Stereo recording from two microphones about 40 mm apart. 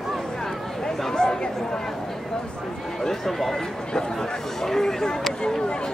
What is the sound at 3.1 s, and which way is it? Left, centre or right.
Speech, centre.